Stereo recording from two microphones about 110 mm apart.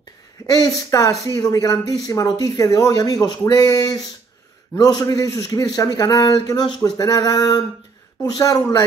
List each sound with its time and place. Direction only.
0.5 s speech: 35° left (ahead or behind)